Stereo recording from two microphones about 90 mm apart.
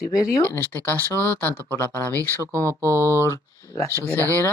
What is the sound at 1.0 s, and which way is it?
Speech, 35° right (ahead or behind).